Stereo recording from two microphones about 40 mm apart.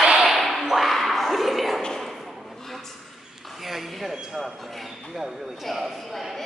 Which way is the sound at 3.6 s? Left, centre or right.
Centre.